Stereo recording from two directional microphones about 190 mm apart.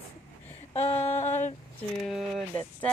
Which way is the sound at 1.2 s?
35° left (ahead or behind).